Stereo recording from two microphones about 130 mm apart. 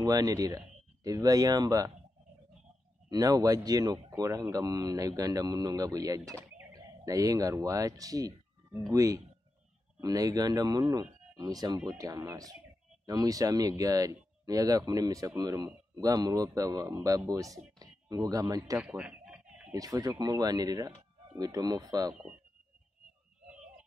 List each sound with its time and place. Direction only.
0.0 s speech: 30° right (ahead or behind)
3.1 s speech: 30° right (ahead or behind)
18.8 s chicken: 10° right (ahead or behind)
19.7 s speech: 30° right (ahead or behind)